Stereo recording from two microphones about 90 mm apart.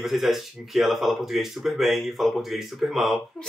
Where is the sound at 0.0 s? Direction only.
Centre (ahead or behind).